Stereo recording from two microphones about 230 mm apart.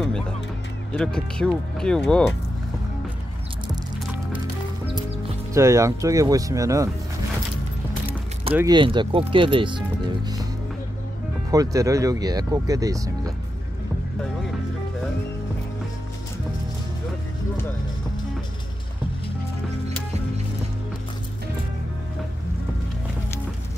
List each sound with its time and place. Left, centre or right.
0.9 s speech: centre
5.5 s speech: centre
8.5 s speech: centre
11.5 s speech: centre